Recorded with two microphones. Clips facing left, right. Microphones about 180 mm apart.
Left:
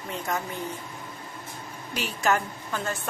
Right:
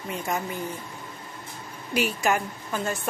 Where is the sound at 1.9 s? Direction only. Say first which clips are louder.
Right 2 dB; 10° right (ahead or behind).